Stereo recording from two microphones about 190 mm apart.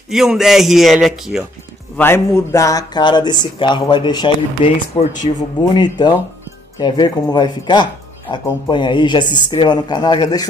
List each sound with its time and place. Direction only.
0.1 s a man's voice: 5° right (ahead or behind)
2.0 s speech: 10° left (ahead or behind)